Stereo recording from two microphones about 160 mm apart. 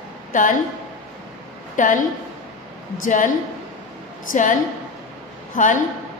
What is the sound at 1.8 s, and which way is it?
Speech, 55° left (ahead or behind).